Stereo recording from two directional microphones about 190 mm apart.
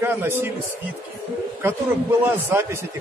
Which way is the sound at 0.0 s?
10° right (ahead or behind).